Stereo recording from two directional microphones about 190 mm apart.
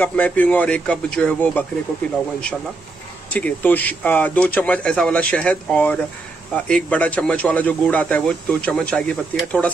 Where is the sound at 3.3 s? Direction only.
10° left (ahead or behind).